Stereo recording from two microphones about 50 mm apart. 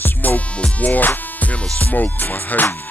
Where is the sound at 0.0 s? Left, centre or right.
Left.